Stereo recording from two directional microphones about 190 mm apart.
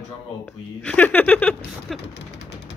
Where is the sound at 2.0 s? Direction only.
65° left (ahead or behind).